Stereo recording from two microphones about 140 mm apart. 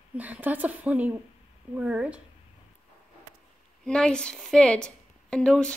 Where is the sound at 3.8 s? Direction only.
5° left (ahead or behind).